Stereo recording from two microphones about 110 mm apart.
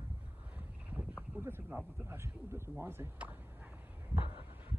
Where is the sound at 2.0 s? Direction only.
25° right (ahead or behind).